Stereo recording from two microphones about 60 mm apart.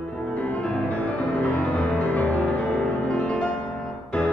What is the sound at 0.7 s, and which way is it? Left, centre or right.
Music, left.